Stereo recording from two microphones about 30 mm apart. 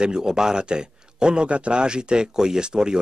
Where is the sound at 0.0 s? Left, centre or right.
Right.